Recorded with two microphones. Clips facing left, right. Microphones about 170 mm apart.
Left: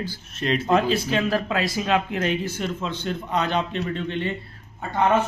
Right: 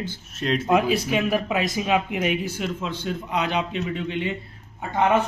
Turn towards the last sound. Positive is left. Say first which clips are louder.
# even
turn(degrees=-15)  # may be behind; listen again after turning